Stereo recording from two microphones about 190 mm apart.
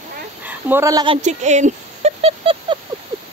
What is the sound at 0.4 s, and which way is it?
Speech, 10° right (ahead or behind).